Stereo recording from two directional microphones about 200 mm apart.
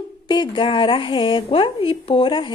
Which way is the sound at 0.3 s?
20° left (ahead or behind).